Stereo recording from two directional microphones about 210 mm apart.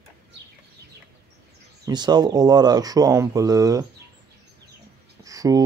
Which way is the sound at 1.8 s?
20° right (ahead or behind).